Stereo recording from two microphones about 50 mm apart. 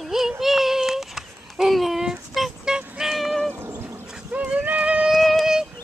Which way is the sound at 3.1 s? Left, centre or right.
Centre.